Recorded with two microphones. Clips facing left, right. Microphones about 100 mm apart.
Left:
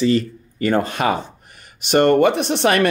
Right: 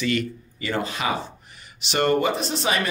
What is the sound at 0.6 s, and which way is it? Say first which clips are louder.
Speech: left 8 dB; 50° left (ahead or behind).